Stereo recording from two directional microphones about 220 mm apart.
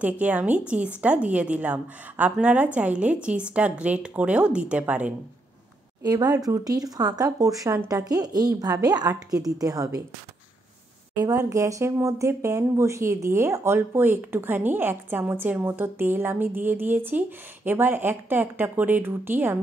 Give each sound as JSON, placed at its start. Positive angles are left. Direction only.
{"t": 0.0, "sound": "a woman's voice", "side_deg": -5}
{"t": 11.2, "sound": "speech", "side_deg": -15}